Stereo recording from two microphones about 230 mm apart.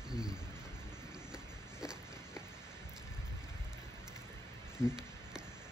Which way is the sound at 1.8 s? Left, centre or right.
Centre.